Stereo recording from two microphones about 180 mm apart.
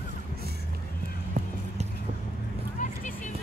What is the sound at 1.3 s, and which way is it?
Music, 35° right (ahead or behind).